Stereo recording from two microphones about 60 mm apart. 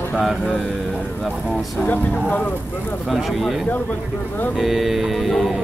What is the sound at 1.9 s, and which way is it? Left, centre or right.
Speech, left.